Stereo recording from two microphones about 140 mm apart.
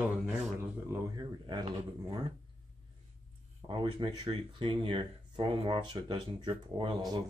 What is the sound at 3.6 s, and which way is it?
Speech, 35° right (ahead or behind).